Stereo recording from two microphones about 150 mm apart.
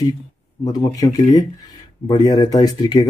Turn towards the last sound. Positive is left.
turn(degrees=30)  # may be behind; listen again after turning